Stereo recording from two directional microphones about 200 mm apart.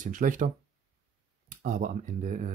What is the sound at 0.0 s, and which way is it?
Speech, 40° right (ahead or behind).